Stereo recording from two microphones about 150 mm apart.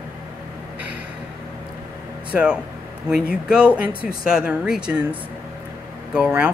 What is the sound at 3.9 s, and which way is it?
Speech, 75° left (ahead or behind).